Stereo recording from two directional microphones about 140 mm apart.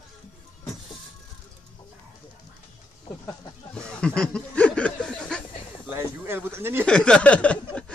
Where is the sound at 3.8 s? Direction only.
5° left (ahead or behind).